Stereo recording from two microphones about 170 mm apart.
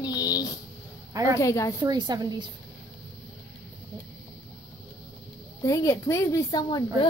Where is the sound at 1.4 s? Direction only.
20° left (ahead or behind).